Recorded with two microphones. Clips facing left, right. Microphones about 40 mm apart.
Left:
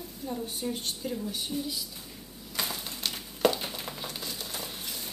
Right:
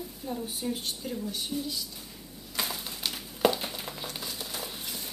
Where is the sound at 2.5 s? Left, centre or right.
Centre.